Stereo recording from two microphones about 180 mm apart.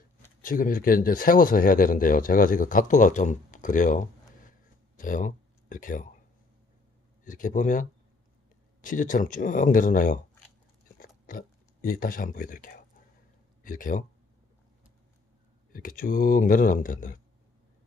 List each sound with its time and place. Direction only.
0.4 s speech: 50° left (ahead or behind)
7.2 s speech: 45° left (ahead or behind)
11.0 s a sound: 50° left (ahead or behind)
13.6 s speech: 50° left (ahead or behind)
15.7 s speech: 50° left (ahead or behind)